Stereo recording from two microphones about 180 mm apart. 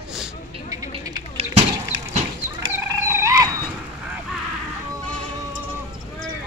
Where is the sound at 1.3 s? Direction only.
35° right (ahead or behind).